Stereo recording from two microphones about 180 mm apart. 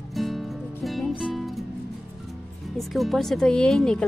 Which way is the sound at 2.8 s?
Centre (ahead or behind).